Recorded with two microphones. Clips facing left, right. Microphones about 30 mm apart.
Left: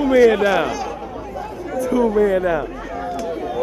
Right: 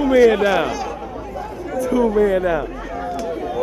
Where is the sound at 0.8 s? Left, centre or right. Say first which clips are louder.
Even; centre.